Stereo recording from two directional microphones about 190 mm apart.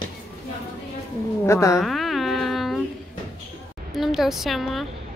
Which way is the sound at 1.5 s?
15° left (ahead or behind).